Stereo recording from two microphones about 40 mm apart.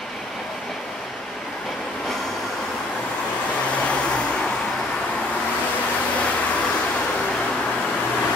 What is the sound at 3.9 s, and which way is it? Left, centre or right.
Vehicle, left.